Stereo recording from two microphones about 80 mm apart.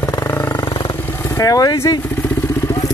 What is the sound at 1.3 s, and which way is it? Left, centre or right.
Speech, left.